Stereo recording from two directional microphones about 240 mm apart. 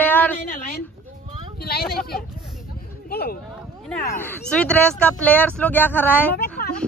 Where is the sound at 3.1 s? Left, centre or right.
Left.